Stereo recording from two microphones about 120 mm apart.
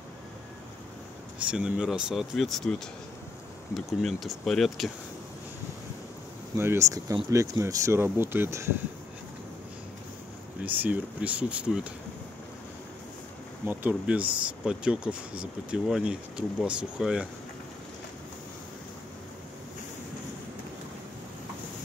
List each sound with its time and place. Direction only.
1.4 s speech: 10° right (ahead or behind)
3.7 s speech: centre (ahead or behind)
6.5 s speech: 20° right (ahead or behind)
10.6 s speech: 15° right (ahead or behind)
13.7 s speech: 10° right (ahead or behind)